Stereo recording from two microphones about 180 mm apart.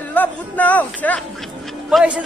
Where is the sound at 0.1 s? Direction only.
10° left (ahead or behind).